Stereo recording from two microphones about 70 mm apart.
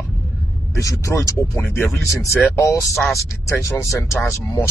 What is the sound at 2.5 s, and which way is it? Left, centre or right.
Speech, left.